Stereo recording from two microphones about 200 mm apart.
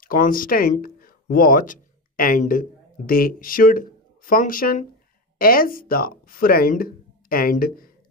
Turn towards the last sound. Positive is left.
turn(degrees=45)  # may be behind; listen again after turning